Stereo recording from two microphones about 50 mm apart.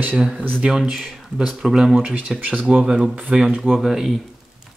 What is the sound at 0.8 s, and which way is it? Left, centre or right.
Speech, centre.